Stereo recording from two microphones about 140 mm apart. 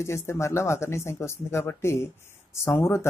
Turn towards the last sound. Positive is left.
turn(degrees=20)  # may be behind; listen again after turning